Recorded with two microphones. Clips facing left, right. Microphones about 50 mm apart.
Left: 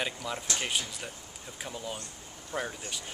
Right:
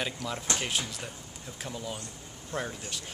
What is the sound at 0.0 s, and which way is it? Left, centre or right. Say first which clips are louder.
Speech: even; centre.